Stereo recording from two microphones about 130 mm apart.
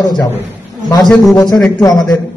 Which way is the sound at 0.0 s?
30° left (ahead or behind).